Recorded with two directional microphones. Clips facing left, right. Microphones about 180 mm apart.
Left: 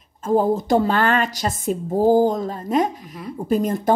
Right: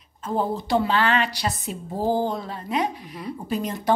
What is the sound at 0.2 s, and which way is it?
A woman's voice, 45° left (ahead or behind).